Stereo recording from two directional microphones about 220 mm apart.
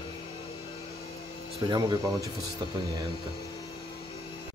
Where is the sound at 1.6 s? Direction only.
20° right (ahead or behind).